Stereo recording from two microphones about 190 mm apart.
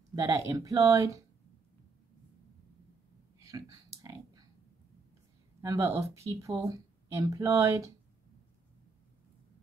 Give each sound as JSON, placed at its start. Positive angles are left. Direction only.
{"t": 0.1, "sound": "speech", "side_deg": -15}
{"t": 3.3, "sound": "a sound", "side_deg": -15}
{"t": 5.6, "sound": "speech", "side_deg": -15}